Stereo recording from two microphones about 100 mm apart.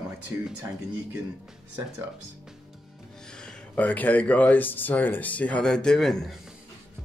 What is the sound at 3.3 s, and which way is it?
Speech, 5° left (ahead or behind).